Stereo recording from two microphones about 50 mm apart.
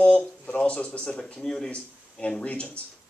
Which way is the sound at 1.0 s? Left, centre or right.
Centre.